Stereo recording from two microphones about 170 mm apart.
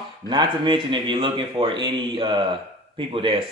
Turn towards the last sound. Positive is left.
turn(degrees=-30)  # may be behind; listen again after turning